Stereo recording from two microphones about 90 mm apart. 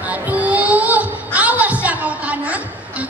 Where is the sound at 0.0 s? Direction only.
15° right (ahead or behind).